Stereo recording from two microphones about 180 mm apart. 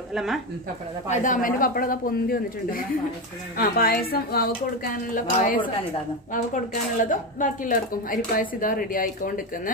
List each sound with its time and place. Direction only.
0.1 s speech: centre (ahead or behind)
1.0 s a woman's voice: 45° left (ahead or behind); by 4.5 s 60° left (ahead or behind)
4.8 s speech: 50° left (ahead or behind)